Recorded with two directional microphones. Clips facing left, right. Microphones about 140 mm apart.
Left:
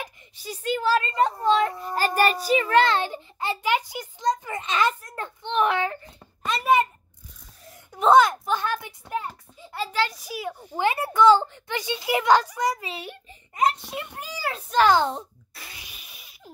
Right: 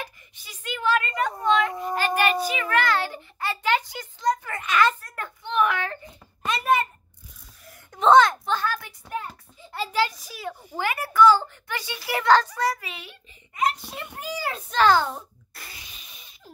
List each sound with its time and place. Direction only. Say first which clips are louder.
0.4 s a woman's voice: left 5 dB; 40° left (ahead or behind)
6.4 s a sound: even; centre (ahead or behind)
7.9 s a child's voice: right 1 dB; 5° left (ahead or behind)
8.5 s a child's voice: even; 20° left (ahead or behind)
10.1 s a child's voice: left 3 dB; 10° left (ahead or behind)
12.8 s a woman's voice: left 5 dB; 30° left (ahead or behind)
13.9 s a child's voice: right 1 dB; 5° left (ahead or behind)
15.5 s a sound: right 1 dB; 5° left (ahead or behind)